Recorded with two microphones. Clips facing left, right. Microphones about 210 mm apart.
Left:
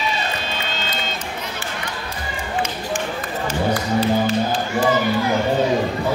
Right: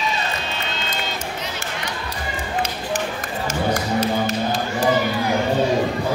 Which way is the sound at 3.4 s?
45° right (ahead or behind).